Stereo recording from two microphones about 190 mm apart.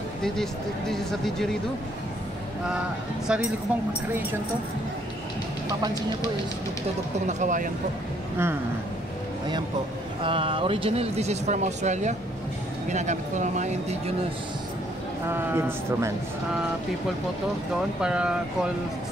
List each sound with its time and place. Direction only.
0.2 s speech: centre (ahead or behind)
3.3 s speech: 5° right (ahead or behind)
7.2 s speech: 40° right (ahead or behind)
10.2 s speech: 30° right (ahead or behind)
15.2 s speech: 15° right (ahead or behind)
18.0 s speech: 5° right (ahead or behind)